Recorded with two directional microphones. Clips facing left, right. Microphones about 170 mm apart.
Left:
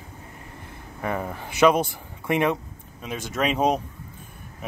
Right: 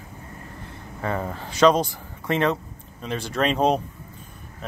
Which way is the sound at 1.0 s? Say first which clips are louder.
Right 1 dB; 10° left (ahead or behind).